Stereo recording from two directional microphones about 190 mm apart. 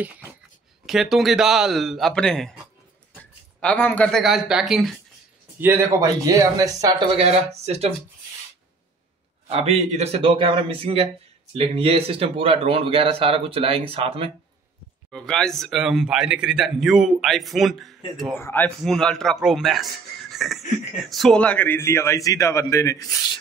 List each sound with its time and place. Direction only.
0.8 s a man's voice: centre (ahead or behind)
3.6 s a man's voice: 10° left (ahead or behind); by 7.0 s 20° right (ahead or behind)
7.2 s speech: 35° right (ahead or behind)
9.5 s speech: 30° right (ahead or behind)
15.0 s a man's voice: 5° left (ahead or behind)
18.4 s a man's voice: 10° left (ahead or behind)